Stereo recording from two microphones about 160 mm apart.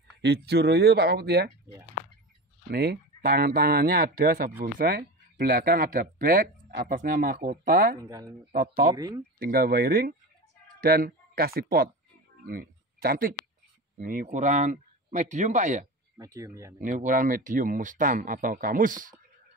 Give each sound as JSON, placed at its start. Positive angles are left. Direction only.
{"t": 0.2, "sound": "speech", "side_deg": -90}
{"t": 2.7, "sound": "speech", "side_deg": -80}
{"t": 8.0, "sound": "speech", "side_deg": -20}
{"t": 8.5, "sound": "speech", "side_deg": -65}
{"t": 8.9, "sound": "speech", "side_deg": -25}
{"t": 9.4, "sound": "speech", "side_deg": -65}
{"t": 16.2, "sound": "speech", "side_deg": -20}
{"t": 16.8, "sound": "speech", "side_deg": -55}